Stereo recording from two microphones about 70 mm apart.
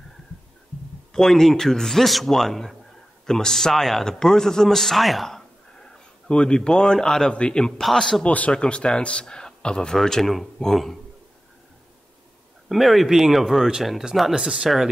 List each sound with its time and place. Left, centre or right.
1.1 s a man's voice: centre
8.3 s a man's voice: centre
12.6 s a man's voice: centre